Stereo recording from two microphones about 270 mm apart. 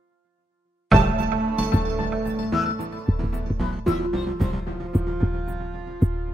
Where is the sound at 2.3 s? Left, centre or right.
Centre.